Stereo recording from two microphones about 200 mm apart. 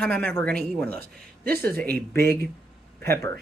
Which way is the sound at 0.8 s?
50° right (ahead or behind).